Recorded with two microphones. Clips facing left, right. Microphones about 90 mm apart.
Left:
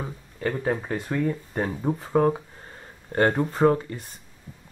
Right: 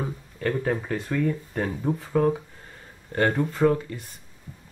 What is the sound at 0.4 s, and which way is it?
Speech, 15° left (ahead or behind).